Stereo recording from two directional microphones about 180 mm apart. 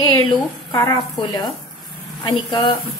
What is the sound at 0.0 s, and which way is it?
A woman's voice, 25° left (ahead or behind).